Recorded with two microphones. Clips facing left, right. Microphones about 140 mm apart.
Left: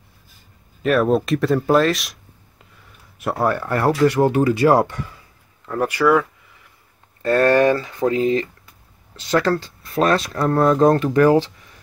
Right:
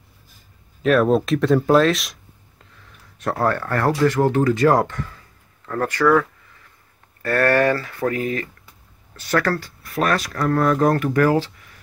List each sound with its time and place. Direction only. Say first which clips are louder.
0.8 s speech: right 1 dB; centre (ahead or behind)
3.2 s speech: left 1 dB; 10° left (ahead or behind)
7.2 s speech: left 3 dB; 20° left (ahead or behind)